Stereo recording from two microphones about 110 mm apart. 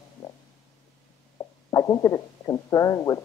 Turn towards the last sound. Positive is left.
turn(degrees=30)  # may be behind; listen again after turning